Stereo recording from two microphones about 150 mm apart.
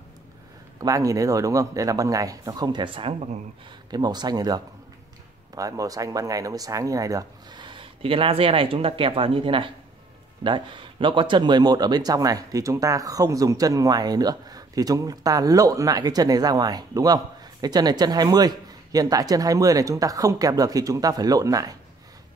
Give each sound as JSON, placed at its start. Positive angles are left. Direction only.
{"t": 0.7, "sound": "speech", "side_deg": -20}
{"t": 3.9, "sound": "speech", "side_deg": -25}